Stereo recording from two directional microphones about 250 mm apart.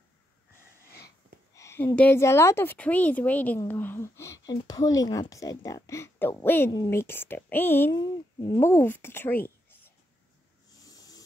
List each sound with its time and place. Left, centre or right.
0.8 s sniff: left
1.5 s speech: centre
10.8 s a sound: centre